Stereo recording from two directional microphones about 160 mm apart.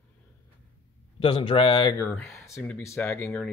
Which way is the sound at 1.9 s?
15° left (ahead or behind).